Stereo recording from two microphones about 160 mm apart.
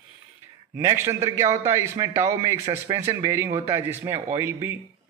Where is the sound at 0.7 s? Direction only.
15° right (ahead or behind).